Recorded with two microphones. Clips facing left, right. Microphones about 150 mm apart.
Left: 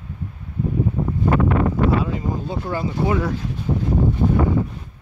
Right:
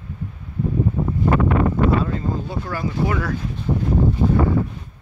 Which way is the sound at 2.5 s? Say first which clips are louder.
Left 1 dB; 20° left (ahead or behind).